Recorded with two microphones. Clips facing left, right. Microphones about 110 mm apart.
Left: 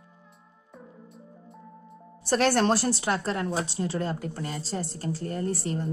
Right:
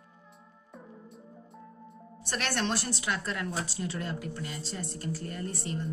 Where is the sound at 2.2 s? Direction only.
35° left (ahead or behind).